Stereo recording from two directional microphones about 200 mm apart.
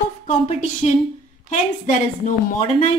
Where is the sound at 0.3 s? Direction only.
30° left (ahead or behind).